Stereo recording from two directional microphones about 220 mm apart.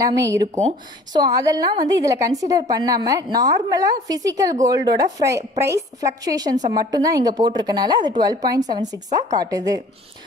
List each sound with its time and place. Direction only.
0.0 s a woman's voice: 15° right (ahead or behind)